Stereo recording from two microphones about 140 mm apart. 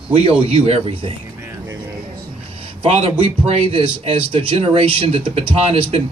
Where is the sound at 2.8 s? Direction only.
45° right (ahead or behind).